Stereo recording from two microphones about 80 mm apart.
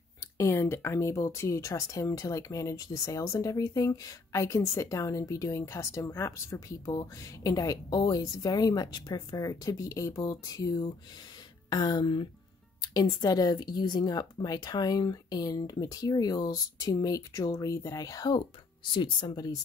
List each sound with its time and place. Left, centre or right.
0.4 s speech: left
6.9 s speech: left
11.7 s speech: left
12.8 s speech: left
18.9 s speech: left
19.3 s speech: left